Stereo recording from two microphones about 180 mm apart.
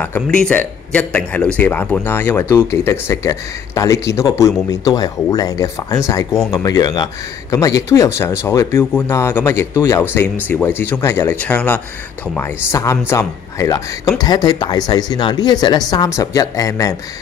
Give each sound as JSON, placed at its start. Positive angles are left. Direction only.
{"t": 0.0, "sound": "speech", "side_deg": 10}